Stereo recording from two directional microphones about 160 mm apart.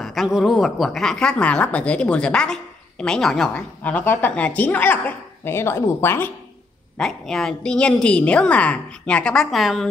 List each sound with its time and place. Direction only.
0.0 s a woman's voice: centre (ahead or behind)
7.0 s a woman's voice: 5° left (ahead or behind)